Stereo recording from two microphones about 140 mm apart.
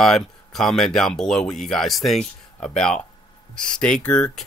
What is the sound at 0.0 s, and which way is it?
Speech, 5° left (ahead or behind).